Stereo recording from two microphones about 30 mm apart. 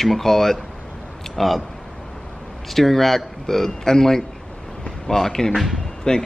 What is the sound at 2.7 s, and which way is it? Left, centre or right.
Speech, centre.